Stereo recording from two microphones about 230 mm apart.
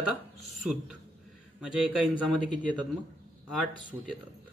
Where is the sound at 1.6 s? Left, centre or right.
Centre.